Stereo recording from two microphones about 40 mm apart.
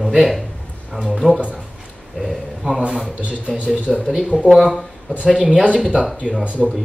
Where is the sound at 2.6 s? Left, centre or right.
Right.